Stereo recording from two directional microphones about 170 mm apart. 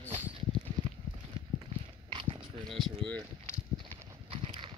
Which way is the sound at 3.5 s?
35° right (ahead or behind).